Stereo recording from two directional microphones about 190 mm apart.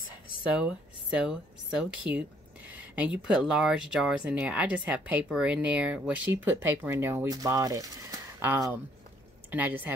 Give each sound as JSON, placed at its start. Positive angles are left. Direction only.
{"t": 0.6, "sound": "speech", "side_deg": -5}
{"t": 2.1, "sound": "speech", "side_deg": -60}
{"t": 2.7, "sound": "speech", "side_deg": -5}